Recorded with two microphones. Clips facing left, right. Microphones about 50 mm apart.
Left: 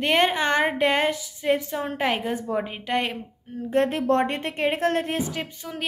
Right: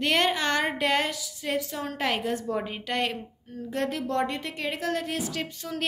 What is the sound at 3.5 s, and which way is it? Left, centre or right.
A woman's voice, left.